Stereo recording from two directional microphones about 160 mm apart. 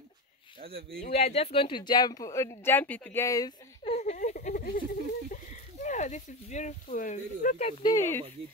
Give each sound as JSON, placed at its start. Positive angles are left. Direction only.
{"t": 1.0, "sound": "speech", "side_deg": 40}
{"t": 3.8, "sound": "a sound", "side_deg": 40}
{"t": 5.3, "sound": "speech", "side_deg": 50}
{"t": 7.8, "sound": "speech", "side_deg": 20}